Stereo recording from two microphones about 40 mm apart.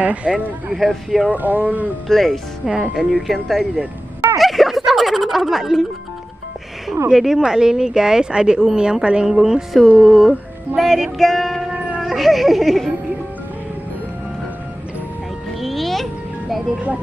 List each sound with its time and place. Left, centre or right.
0.0 s speech: right
0.7 s speech: centre
1.3 s speech: right
2.0 s speech: centre
2.6 s speech: centre
4.4 s a sound: centre
6.9 s a woman's voice: centre; by 9.3 s right
9.3 s speech: centre
11.2 s music: centre
12.1 s speech: centre
15.6 s music: centre